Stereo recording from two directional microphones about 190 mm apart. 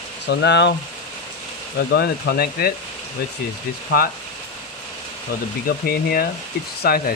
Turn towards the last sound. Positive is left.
turn(degrees=50)  # may be behind; listen again after turning